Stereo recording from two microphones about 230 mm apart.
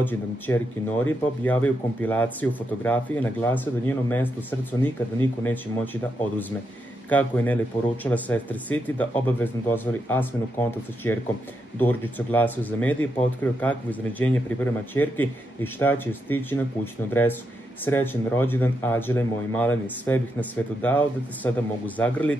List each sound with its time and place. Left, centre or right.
0.0 s speech: centre
7.1 s speech: centre